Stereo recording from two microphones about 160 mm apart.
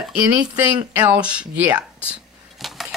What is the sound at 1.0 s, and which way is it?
Speech, 10° right (ahead or behind).